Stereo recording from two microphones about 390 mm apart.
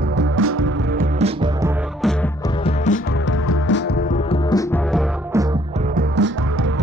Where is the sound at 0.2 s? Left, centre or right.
Right.